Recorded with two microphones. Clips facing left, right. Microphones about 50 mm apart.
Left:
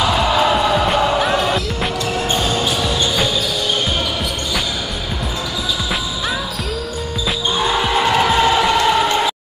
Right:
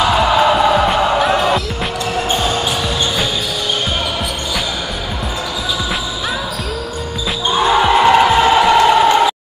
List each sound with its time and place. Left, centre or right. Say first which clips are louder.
0.0 s music: right 3 dB; centre
0.8 s music: right 2 dB; centre
2.2 s basketball bounce: right 1 dB; centre
2.8 s basketball bounce: even; centre
7.7 s music: right 7 dB; centre
8.7 s a sound: right 5 dB; centre